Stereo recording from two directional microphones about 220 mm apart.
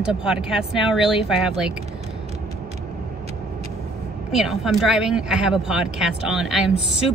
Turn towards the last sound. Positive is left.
turn(degrees=0)  # may be behind; listen again after turning